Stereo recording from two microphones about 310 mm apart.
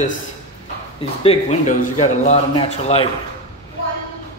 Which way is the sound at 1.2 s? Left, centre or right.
Centre.